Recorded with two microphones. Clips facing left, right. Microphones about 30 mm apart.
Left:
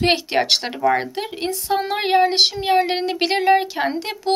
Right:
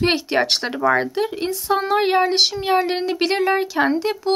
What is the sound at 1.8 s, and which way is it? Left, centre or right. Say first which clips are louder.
Speech: even; centre.